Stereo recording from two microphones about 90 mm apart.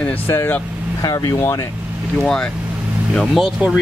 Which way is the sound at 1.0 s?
45° left (ahead or behind).